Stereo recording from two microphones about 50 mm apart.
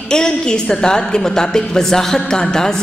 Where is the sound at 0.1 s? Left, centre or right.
Centre.